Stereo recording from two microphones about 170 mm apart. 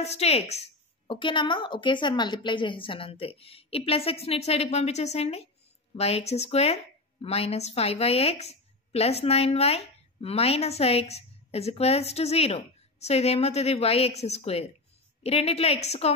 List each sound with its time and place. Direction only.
0.0 s a woman's voice: 40° left (ahead or behind)